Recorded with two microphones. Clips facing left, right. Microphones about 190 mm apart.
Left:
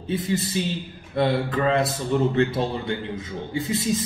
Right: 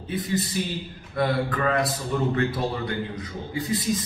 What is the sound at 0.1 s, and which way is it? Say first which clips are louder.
A man's voice: left 2 dB; 25° left (ahead or behind).